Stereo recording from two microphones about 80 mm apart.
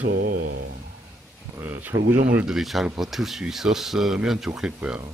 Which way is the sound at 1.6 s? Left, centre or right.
Right.